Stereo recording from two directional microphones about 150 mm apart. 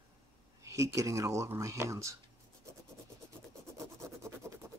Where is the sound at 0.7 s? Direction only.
20° right (ahead or behind).